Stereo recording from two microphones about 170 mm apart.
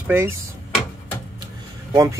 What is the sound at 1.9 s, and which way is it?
Speech, 20° right (ahead or behind).